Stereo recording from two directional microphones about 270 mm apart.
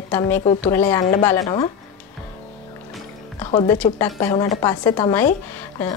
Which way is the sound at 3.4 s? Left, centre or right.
Centre.